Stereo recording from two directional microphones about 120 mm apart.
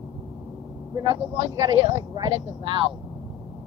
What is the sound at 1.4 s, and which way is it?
Speech, 25° right (ahead or behind).